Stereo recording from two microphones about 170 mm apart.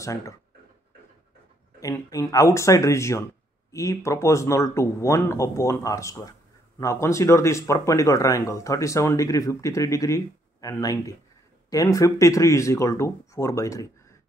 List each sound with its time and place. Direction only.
0.0 s speech: 20° left (ahead or behind)
1.8 s speech: 20° left (ahead or behind)